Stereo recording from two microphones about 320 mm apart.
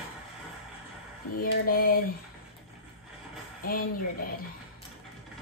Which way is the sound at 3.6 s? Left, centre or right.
Left.